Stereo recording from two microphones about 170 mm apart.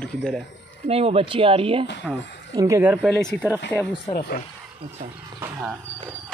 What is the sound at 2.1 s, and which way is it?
Speech, 5° left (ahead or behind).